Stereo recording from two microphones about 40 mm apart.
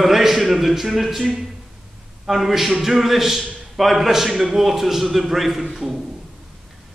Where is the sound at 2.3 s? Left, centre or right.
Centre.